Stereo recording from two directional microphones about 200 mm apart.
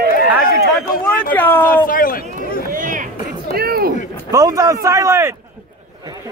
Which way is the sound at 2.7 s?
40° right (ahead or behind).